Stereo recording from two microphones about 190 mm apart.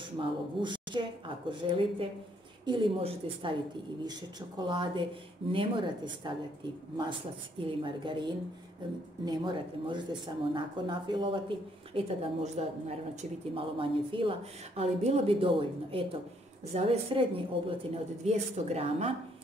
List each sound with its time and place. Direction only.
0.2 s speech: 25° right (ahead or behind)
7.6 s a woman's voice: 25° right (ahead or behind)